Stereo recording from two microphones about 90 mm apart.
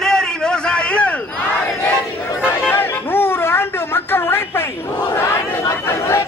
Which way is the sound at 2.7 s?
25° left (ahead or behind).